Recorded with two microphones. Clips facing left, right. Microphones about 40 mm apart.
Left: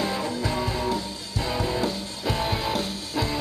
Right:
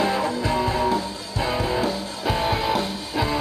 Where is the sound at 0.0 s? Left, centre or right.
Centre.